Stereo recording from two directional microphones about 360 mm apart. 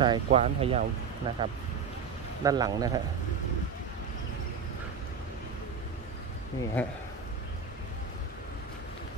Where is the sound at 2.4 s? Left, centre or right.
Centre.